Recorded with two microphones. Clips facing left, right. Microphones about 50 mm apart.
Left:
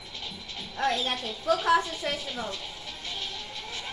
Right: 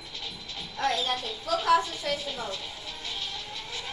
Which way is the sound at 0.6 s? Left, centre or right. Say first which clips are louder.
Even; left.